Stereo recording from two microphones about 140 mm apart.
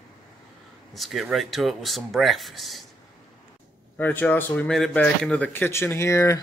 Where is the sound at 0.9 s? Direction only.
Centre (ahead or behind).